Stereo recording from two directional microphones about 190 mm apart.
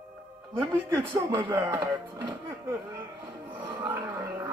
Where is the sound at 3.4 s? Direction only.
25° right (ahead or behind).